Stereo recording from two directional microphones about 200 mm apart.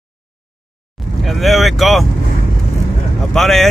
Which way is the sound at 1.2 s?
Centre (ahead or behind).